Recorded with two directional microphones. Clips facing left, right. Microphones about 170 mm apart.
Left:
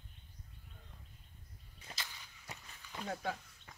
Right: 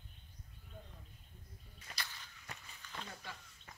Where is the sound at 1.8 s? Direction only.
20° left (ahead or behind).